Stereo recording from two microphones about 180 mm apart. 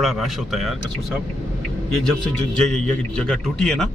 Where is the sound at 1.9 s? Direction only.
5° left (ahead or behind).